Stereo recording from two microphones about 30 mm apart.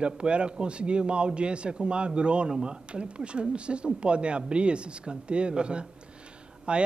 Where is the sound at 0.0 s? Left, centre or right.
Right.